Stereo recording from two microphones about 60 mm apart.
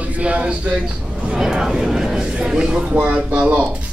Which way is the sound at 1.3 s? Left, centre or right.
Centre.